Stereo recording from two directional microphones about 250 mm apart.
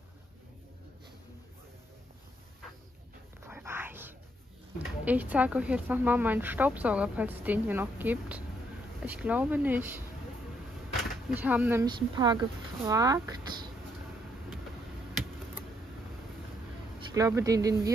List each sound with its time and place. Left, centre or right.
3.4 s whispering: centre
5.0 s speech: centre
11.3 s speech: centre
17.1 s speech: centre